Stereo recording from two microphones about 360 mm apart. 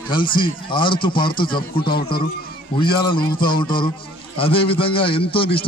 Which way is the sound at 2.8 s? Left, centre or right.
Centre.